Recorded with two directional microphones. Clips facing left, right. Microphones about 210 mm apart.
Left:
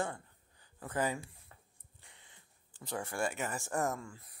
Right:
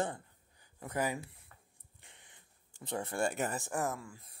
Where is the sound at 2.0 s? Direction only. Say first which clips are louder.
Right 1 dB; 20° right (ahead or behind).